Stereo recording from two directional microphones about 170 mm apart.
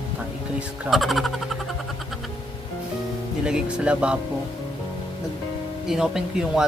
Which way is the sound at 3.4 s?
5° right (ahead or behind).